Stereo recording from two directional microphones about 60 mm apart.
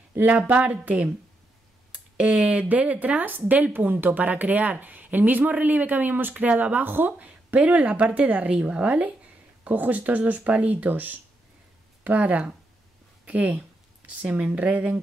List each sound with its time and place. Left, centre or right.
0.2 s a woman's voice: right
1.9 s a sound: right
2.7 s a woman's voice: right